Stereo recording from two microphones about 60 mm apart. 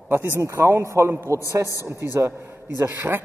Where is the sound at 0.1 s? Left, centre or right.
Right.